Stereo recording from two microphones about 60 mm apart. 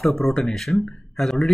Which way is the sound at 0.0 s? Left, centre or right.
Centre.